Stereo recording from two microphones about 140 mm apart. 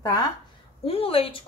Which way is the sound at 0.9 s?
40° left (ahead or behind).